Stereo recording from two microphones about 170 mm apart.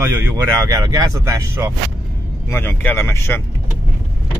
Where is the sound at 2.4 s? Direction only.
10° left (ahead or behind).